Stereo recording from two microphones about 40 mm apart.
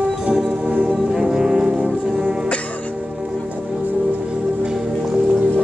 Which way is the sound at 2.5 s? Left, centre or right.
Left.